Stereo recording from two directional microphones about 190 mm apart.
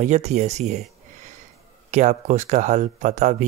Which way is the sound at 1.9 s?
40° right (ahead or behind).